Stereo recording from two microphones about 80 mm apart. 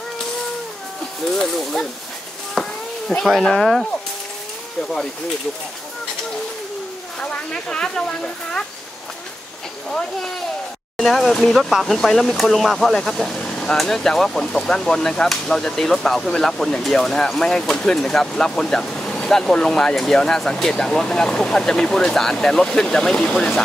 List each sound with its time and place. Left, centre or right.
1.3 s speech: centre
2.5 s a sound: centre
7.2 s speech: centre
11.0 s speech: centre